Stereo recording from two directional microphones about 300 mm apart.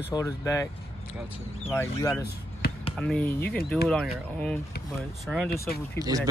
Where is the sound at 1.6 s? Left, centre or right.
Centre.